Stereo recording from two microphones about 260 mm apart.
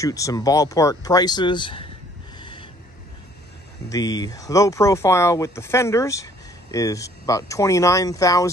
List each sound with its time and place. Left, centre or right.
0.0 s speech: centre
2.3 s a sound: centre
3.9 s speech: centre